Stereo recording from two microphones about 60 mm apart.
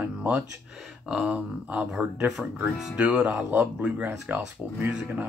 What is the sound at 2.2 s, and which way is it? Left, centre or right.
Speech, centre.